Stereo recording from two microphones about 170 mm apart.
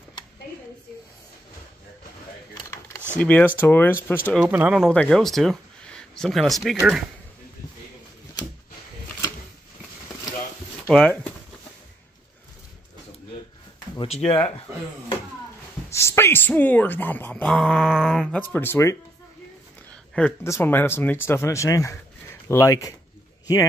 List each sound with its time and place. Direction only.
3.2 s speech: 10° left (ahead or behind)
4.4 s speech: 10° right (ahead or behind)
4.8 s speech: 5° left (ahead or behind)
10.9 s speech: 5° left (ahead or behind)
13.9 s speech: 35° left (ahead or behind)
15.9 s speech: 15° left (ahead or behind)
20.2 s speech: 10° left (ahead or behind)